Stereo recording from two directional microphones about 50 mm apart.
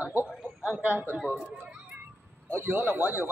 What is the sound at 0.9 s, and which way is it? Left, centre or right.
Speech, right.